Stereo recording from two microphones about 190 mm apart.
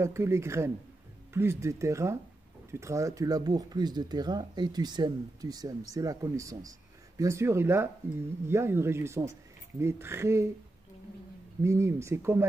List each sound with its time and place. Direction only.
0.0 s speech: 15° right (ahead or behind)
11.6 s speech: 15° right (ahead or behind)